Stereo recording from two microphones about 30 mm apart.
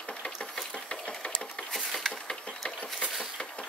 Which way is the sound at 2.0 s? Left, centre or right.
Centre.